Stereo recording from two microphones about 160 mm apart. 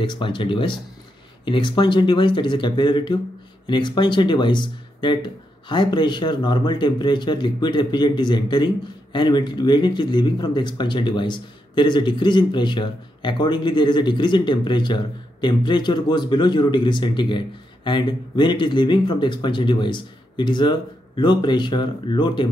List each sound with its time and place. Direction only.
0.0 s speech: 30° left (ahead or behind)